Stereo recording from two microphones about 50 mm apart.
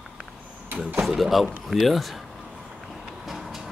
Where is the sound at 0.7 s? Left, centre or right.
Right.